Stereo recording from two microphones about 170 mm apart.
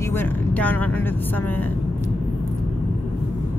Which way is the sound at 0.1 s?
10° left (ahead or behind).